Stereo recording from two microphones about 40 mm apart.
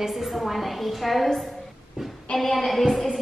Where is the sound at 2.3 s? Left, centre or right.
Centre.